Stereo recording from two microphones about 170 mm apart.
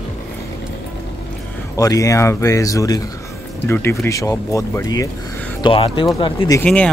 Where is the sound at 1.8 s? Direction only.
20° left (ahead or behind).